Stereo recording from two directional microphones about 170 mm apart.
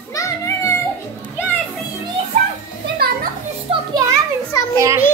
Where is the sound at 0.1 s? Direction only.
15° left (ahead or behind).